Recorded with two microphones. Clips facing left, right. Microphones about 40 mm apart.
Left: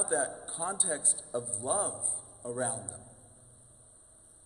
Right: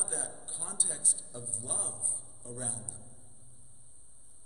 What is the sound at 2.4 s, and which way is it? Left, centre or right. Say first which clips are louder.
Speech: left 9 dB; left.